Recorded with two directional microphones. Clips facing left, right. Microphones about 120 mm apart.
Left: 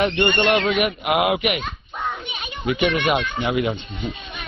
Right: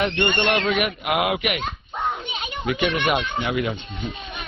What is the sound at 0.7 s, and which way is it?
Speech, 10° left (ahead or behind).